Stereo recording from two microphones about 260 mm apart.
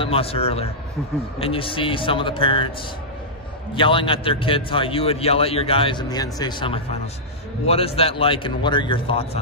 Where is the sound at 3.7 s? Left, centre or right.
Centre.